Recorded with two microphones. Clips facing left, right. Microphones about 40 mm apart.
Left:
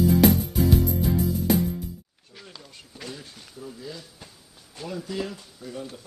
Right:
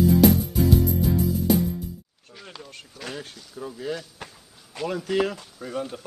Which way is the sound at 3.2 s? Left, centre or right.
Right.